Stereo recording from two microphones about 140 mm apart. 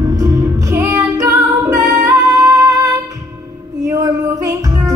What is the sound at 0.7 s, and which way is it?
Music, 20° right (ahead or behind).